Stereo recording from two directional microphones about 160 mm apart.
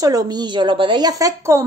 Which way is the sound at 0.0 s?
25° right (ahead or behind).